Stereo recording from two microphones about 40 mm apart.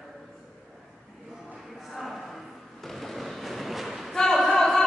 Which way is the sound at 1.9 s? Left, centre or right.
Centre.